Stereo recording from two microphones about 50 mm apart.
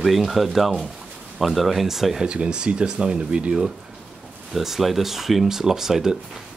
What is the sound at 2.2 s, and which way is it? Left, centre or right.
Speech, centre.